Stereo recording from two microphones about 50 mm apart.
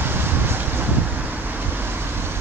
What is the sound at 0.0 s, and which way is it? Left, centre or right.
Vehicle, right.